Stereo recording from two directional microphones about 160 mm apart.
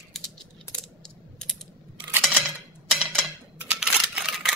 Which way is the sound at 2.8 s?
5° right (ahead or behind).